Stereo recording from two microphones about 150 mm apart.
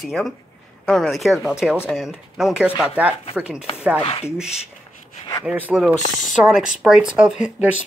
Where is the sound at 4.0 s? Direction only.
40° left (ahead or behind).